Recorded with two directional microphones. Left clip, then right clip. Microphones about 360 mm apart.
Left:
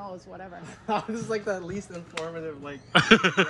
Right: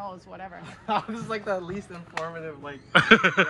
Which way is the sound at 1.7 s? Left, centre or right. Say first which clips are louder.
Right 1 dB; centre.